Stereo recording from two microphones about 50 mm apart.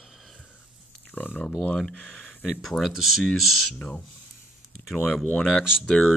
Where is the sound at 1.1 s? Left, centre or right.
Left.